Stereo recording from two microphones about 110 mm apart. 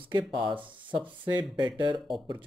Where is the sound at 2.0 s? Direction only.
Centre (ahead or behind).